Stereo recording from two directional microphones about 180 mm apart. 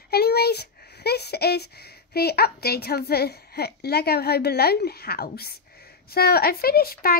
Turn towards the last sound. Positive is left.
turn(degrees=55)  # may be behind; listen again after turning